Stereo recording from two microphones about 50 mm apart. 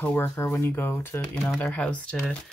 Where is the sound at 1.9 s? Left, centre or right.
Left.